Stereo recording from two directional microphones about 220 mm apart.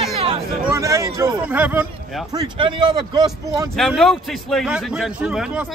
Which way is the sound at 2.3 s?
20° right (ahead or behind).